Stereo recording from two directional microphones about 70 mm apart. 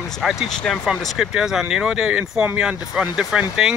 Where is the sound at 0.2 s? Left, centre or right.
Centre.